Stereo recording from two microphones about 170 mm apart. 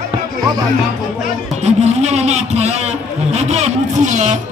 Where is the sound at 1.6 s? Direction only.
40° right (ahead or behind).